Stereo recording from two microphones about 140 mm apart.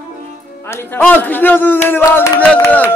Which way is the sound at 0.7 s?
15° left (ahead or behind).